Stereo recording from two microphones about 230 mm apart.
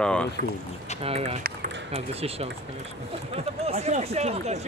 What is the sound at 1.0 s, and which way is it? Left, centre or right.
Speech, right.